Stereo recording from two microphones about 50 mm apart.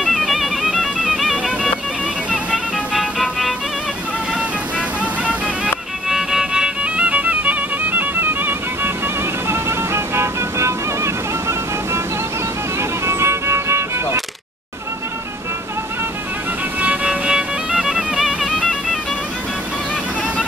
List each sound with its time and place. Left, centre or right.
0.0 s music: centre
3.0 s music: centre
4.3 s music: right
6.0 s music: centre; by 12.0 s right
13.0 s music: right
16.8 s music: right; by 18.9 s centre